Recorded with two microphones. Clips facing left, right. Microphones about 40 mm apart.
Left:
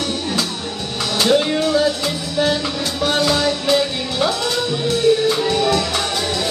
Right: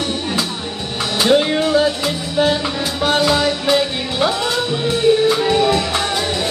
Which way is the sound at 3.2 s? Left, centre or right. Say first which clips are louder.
Right 2 dB; centre.